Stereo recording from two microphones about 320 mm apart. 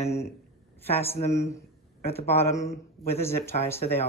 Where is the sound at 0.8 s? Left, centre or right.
Centre.